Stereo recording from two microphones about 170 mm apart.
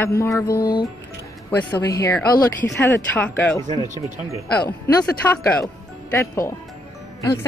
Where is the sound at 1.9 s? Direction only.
15° left (ahead or behind).